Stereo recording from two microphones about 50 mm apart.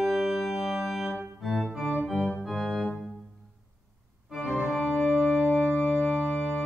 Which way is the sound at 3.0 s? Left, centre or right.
Centre.